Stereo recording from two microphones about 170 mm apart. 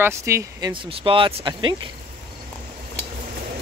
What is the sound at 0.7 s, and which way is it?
Speech, 30° right (ahead or behind).